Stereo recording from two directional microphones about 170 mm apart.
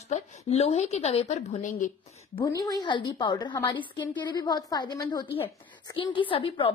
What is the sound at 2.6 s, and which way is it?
A woman's voice, 25° left (ahead or behind).